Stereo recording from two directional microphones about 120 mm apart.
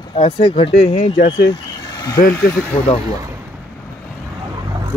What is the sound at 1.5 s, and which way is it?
Vehicle, 30° left (ahead or behind).